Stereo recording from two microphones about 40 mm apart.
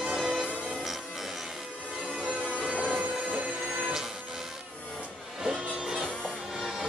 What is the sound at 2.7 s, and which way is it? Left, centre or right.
Train, right.